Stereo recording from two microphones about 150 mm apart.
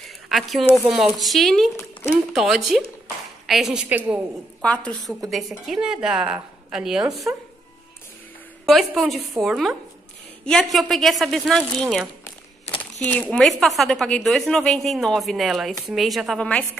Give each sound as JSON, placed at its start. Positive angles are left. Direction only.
{"t": 0.3, "sound": "a woman's voice", "side_deg": 0}
{"t": 4.6, "sound": "a woman's voice", "side_deg": 10}
{"t": 5.7, "sound": "a woman's voice", "side_deg": -5}
{"t": 8.6, "sound": "a woman's voice", "side_deg": 0}
{"t": 12.6, "sound": "a sound", "side_deg": 45}
{"t": 13.0, "sound": "a woman's voice", "side_deg": 5}